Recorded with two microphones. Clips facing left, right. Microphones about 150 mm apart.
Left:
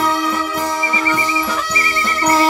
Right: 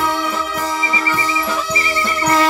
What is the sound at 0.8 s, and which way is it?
Music, 10° right (ahead or behind).